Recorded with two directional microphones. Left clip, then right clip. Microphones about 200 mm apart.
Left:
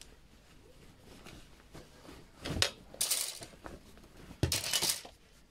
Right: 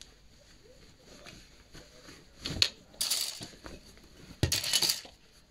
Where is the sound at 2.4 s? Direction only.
30° right (ahead or behind).